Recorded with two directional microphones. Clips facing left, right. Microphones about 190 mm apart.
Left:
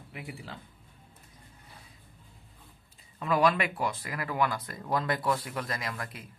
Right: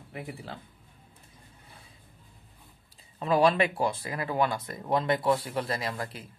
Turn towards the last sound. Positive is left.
turn(degrees=-30)  # may be behind; listen again after turning